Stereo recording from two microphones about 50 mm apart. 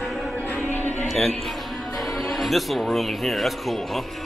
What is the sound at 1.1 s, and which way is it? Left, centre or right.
Speech, centre.